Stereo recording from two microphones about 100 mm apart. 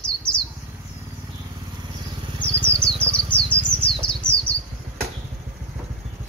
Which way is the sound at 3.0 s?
15° left (ahead or behind).